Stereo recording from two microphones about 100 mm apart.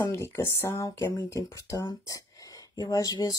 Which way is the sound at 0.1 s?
25° left (ahead or behind).